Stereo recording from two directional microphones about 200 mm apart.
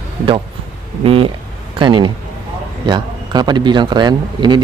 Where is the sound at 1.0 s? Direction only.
30° right (ahead or behind).